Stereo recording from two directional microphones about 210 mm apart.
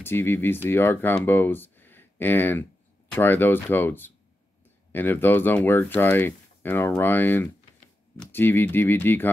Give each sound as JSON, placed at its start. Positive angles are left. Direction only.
{"t": 0.0, "sound": "speech", "side_deg": 10}